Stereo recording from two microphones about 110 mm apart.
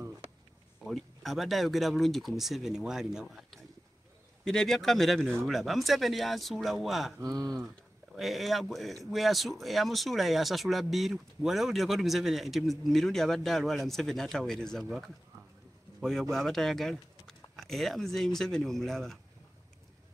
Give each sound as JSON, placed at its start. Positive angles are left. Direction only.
{"t": 0.8, "sound": "speech", "side_deg": 0}
{"t": 7.2, "sound": "speech", "side_deg": -35}
{"t": 8.2, "sound": "speech", "side_deg": 0}